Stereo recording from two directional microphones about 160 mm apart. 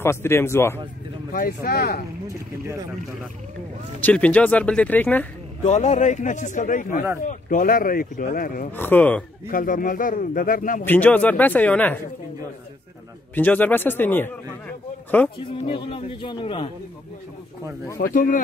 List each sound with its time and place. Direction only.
0.0 s speech: 15° left (ahead or behind)
1.3 s speech: 70° left (ahead or behind)
4.0 s speech: 10° left (ahead or behind)
5.6 s a man's voice: 45° left (ahead or behind)
8.7 s speech: 10° left (ahead or behind)
9.5 s speech: 60° left (ahead or behind)
10.8 s speech: 10° left (ahead or behind)
13.3 s speech: 10° left (ahead or behind)
15.4 s speech: 35° left (ahead or behind)
18.1 s speech: 60° left (ahead or behind)